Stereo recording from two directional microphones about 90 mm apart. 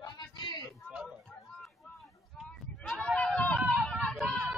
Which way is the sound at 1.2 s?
Centre (ahead or behind).